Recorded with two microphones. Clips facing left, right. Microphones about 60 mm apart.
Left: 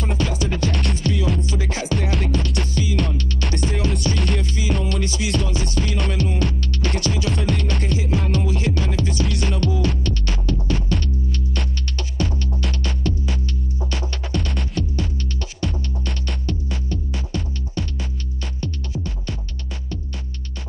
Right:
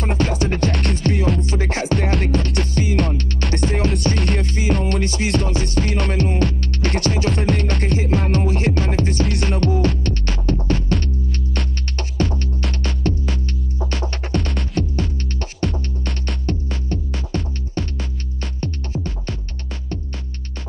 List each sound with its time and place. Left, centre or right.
0.0 s music: right